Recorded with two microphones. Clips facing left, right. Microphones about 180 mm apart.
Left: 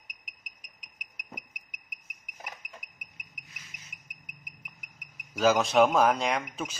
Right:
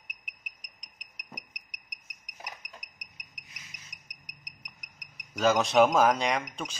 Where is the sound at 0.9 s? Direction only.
10° left (ahead or behind).